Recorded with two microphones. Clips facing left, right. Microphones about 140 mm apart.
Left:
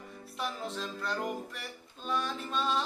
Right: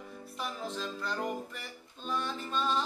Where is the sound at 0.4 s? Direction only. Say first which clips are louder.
Left 1 dB; centre (ahead or behind).